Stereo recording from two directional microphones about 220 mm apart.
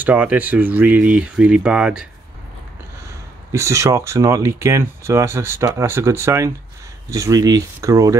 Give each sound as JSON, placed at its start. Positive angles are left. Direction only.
{"t": 0.0, "sound": "speech", "side_deg": -5}
{"t": 3.5, "sound": "speech", "side_deg": -15}